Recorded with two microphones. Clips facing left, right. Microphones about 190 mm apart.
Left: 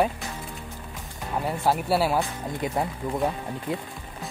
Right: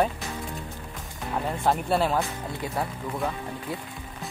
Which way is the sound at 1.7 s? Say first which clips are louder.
Left 1 dB; 5° left (ahead or behind).